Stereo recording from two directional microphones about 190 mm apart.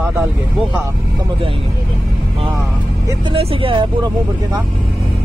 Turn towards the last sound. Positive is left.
turn(degrees=-30)  # may be behind; listen again after turning